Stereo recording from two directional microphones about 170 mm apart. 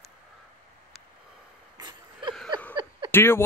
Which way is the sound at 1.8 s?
25° right (ahead or behind).